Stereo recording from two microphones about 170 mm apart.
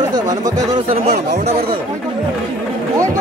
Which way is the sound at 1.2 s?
75° right (ahead or behind).